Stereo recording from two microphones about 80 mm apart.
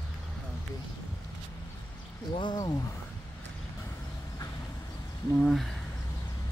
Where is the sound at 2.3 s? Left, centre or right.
Left.